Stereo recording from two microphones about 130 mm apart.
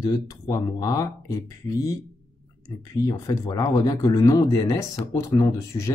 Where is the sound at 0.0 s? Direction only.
30° left (ahead or behind).